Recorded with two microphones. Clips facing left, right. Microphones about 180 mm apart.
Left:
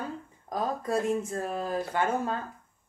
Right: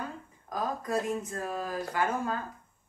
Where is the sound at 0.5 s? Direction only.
30° left (ahead or behind).